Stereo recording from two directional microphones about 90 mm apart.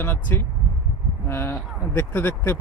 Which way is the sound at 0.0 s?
25° left (ahead or behind).